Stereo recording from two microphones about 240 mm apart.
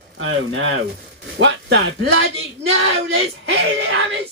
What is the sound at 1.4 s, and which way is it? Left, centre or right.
Speech, right.